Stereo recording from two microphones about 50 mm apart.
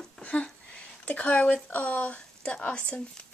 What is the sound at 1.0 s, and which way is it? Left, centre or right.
Speech, left.